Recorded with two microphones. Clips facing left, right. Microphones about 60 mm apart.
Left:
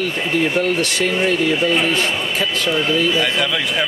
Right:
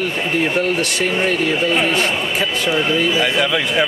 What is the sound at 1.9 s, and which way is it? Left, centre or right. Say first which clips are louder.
Speech: right 1 dB; right.